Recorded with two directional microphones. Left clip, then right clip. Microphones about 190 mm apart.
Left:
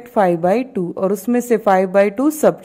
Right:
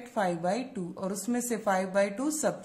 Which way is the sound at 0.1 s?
45° left (ahead or behind).